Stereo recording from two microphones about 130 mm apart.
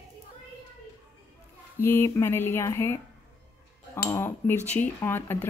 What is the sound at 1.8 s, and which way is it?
A woman's voice, 20° left (ahead or behind).